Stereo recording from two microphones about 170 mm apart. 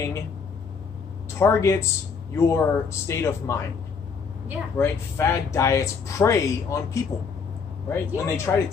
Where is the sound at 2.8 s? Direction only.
15° left (ahead or behind).